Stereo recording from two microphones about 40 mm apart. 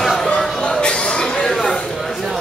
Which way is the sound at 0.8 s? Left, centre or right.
Left.